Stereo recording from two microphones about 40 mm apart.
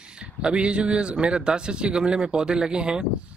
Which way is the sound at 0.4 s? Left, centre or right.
Right.